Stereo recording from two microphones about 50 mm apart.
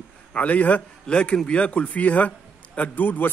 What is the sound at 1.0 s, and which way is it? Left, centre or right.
A man's voice, centre.